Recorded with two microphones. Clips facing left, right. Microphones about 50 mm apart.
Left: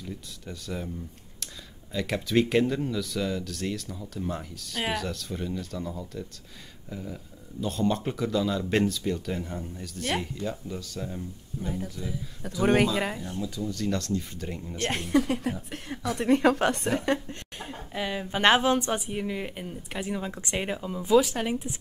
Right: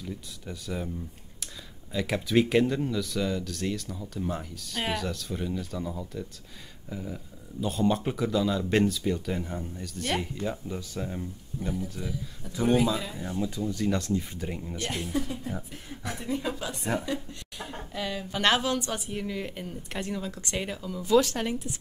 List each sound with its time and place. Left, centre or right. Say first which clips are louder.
0.0 s speech: right 1 dB; centre
10.4 s speech: right 1 dB; centre
11.6 s speech: even; left
12.6 s speech: left 2 dB; left
13.6 s speech: even; centre
14.8 s a woman's voice: left 7 dB; left
17.9 s speech: left 2 dB; left; by 20.2 s centre
20.2 s speech: left 2 dB; left
21.1 s speech: left 1 dB; centre